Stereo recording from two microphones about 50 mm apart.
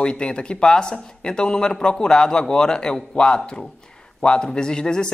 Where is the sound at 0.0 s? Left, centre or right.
Centre.